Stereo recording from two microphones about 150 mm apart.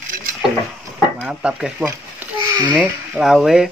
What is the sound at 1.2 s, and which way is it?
Speech, 5° right (ahead or behind).